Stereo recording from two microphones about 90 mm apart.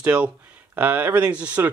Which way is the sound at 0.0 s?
15° right (ahead or behind).